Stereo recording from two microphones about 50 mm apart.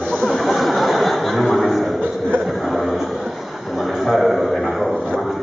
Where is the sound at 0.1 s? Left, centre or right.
Centre.